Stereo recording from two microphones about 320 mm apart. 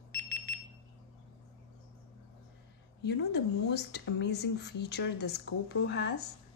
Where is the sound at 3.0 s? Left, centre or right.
Left.